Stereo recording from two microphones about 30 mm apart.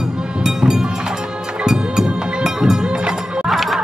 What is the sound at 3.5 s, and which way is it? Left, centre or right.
Music, centre.